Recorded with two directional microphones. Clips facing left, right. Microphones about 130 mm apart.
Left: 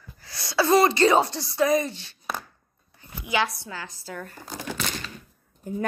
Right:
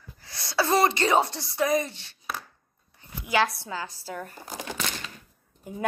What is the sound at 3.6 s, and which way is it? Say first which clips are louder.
A woman's voice: right 3 dB; 25° right (ahead or behind).